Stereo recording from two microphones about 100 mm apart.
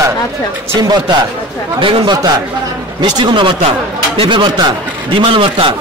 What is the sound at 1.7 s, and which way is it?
Speech, 55° right (ahead or behind).